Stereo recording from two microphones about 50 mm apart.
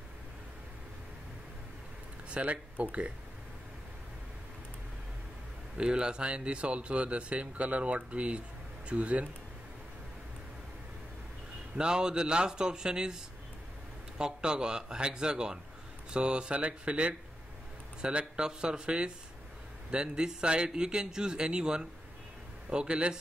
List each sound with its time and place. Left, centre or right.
2.2 s speech: right
5.8 s speech: centre
11.7 s a man's voice: centre